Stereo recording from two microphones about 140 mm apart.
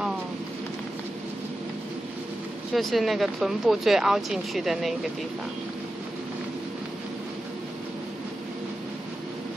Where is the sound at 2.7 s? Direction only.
Centre (ahead or behind).